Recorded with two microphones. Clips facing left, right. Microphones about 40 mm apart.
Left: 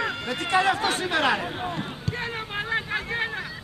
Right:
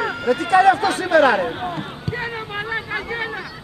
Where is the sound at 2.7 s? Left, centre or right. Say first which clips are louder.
Right 1 dB; centre.